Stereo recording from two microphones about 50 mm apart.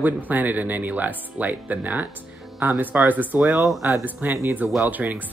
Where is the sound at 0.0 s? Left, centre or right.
Right.